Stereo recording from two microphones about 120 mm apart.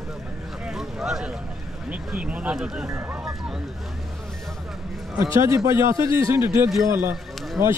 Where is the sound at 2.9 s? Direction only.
20° right (ahead or behind).